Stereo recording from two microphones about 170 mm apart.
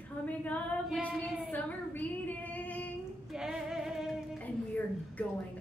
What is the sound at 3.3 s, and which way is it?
Speech, 5° right (ahead or behind).